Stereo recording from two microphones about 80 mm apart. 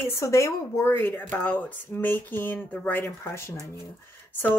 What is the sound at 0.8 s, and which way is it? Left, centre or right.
Speech, left.